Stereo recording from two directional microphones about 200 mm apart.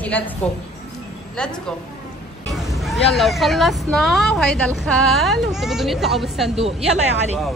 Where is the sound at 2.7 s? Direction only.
Centre (ahead or behind).